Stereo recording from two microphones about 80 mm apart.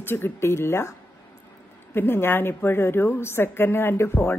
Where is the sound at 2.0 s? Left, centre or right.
Left.